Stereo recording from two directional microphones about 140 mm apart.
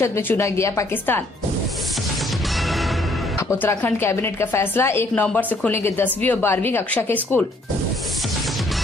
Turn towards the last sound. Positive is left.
turn(degrees=10)  # may be behind; listen again after turning